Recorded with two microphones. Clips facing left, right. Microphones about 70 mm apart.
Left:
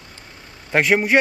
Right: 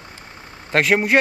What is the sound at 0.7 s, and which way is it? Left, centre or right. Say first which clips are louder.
Speech: even; centre.